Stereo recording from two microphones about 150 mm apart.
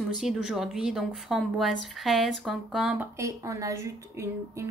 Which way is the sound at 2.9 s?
15° right (ahead or behind).